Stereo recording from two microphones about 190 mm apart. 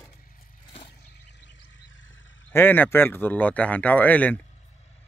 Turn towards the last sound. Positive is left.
turn(degrees=10)  # may be behind; listen again after turning